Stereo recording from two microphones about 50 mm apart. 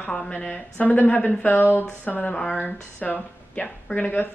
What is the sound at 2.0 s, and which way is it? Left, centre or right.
Speech, left.